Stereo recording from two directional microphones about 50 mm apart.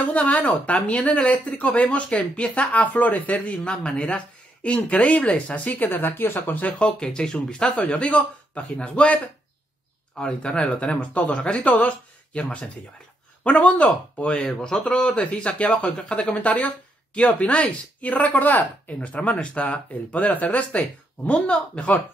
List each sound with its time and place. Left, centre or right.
0.1 s speech: left
5.8 s speech: left
6.6 s speech: centre